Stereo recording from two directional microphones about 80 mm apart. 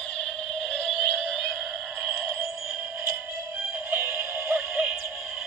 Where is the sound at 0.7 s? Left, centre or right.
Centre.